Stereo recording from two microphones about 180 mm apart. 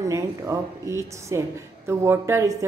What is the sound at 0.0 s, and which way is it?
Speech, 15° right (ahead or behind).